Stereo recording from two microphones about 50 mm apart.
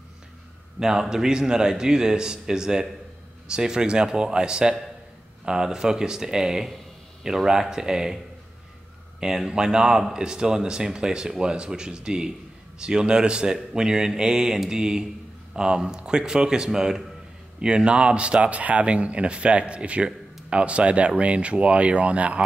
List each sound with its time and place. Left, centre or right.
0.7 s speech: centre
9.2 s speech: centre